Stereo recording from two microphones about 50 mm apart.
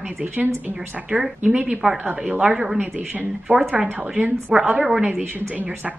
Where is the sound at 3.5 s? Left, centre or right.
Right.